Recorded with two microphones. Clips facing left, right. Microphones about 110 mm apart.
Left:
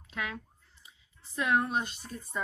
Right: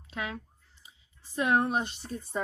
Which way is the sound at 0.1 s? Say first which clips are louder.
Right 1 dB; 20° right (ahead or behind).